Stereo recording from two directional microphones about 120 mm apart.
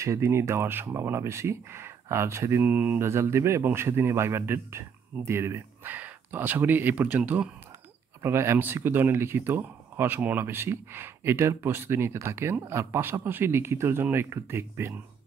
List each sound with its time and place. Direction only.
0.0 s speech: 25° right (ahead or behind)